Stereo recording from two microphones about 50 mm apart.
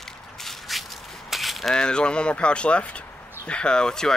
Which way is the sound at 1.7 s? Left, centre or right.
Centre.